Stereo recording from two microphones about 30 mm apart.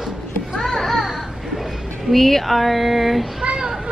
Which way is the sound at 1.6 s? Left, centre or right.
Centre.